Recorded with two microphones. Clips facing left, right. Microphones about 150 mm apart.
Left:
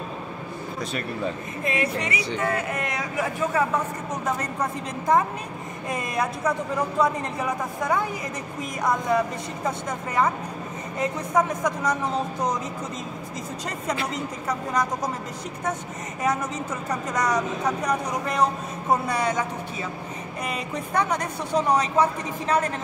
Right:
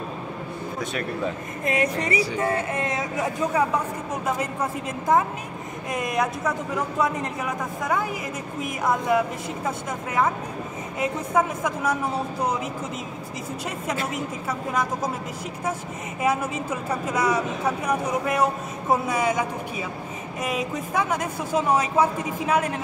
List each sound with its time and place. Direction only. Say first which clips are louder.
1.6 s speech: right 2 dB; 40° right (ahead or behind); by 3.6 s 20° right (ahead or behind)
5.9 s a woman's voice: right 2 dB; centre (ahead or behind)
9.1 s a woman's voice: right 1 dB; 5° right (ahead or behind)
14.1 s a woman's voice: even; 5° right (ahead or behind)
16.2 s a woman's voice: right 2 dB; 10° right (ahead or behind)
20.4 s a woman's voice: right 4 dB; 5° right (ahead or behind)